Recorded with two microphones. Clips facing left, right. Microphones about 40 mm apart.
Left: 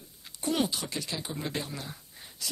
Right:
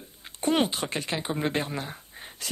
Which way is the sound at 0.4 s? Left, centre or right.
Right.